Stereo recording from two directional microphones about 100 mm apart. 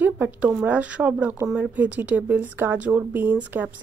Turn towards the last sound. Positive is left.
turn(degrees=-15)  # may be behind; listen again after turning